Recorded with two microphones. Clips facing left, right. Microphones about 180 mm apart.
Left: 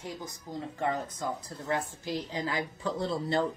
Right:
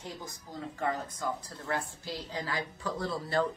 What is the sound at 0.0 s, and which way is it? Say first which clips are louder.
Speech: left 3 dB; 15° left (ahead or behind).